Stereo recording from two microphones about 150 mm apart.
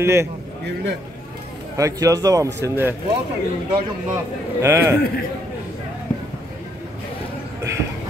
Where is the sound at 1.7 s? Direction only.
20° right (ahead or behind).